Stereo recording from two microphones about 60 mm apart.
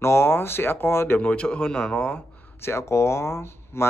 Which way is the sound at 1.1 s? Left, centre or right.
Left.